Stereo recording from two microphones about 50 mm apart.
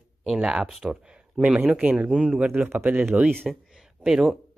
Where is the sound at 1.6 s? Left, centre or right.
Right.